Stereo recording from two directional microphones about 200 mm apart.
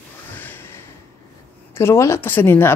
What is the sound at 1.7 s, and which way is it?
Speech, 15° left (ahead or behind).